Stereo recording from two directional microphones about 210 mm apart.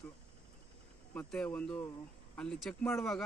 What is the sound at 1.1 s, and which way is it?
Speech, 5° left (ahead or behind).